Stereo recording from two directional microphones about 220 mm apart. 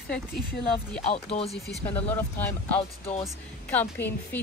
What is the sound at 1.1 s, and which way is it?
Speech, 25° left (ahead or behind).